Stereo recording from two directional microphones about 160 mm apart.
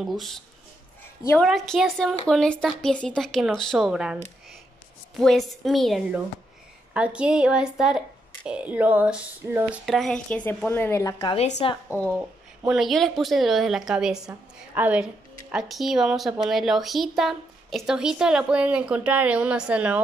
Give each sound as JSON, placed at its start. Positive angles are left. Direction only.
{"t": 0.0, "sound": "speech", "side_deg": 0}
{"t": 1.4, "sound": "speech", "side_deg": 0}
{"t": 9.8, "sound": "a woman's voice", "side_deg": 0}
{"t": 11.3, "sound": "speech", "side_deg": 45}
{"t": 12.1, "sound": "speech", "side_deg": -5}